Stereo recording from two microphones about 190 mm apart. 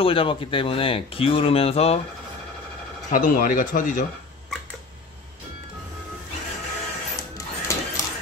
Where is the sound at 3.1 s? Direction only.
45° left (ahead or behind).